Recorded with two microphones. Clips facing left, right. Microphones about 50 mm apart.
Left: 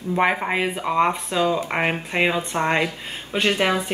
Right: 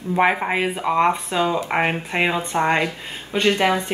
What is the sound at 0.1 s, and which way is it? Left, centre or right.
Speech, centre.